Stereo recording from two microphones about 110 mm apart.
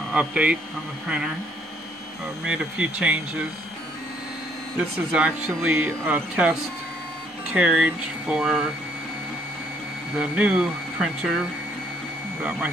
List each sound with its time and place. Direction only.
0.1 s speech: 10° right (ahead or behind)
2.4 s speech: 10° right (ahead or behind)
4.7 s speech: 10° right (ahead or behind)
7.5 s speech: 10° right (ahead or behind)
10.1 s speech: 5° right (ahead or behind)
12.4 s speech: 15° right (ahead or behind)